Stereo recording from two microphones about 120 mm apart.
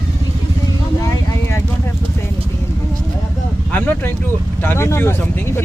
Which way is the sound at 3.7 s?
15° left (ahead or behind).